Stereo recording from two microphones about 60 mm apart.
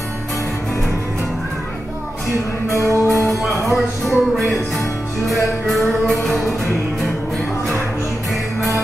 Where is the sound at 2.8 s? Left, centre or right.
Left.